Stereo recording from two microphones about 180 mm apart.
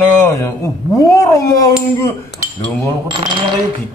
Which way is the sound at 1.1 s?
20° left (ahead or behind).